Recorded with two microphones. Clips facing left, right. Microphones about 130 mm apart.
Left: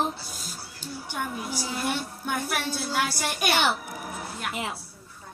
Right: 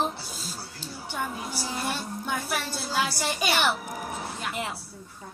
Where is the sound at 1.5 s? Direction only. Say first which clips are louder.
Left 2 dB; 15° left (ahead or behind).